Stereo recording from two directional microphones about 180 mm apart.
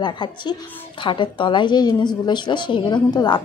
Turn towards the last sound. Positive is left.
turn(degrees=25)  # may be behind; listen again after turning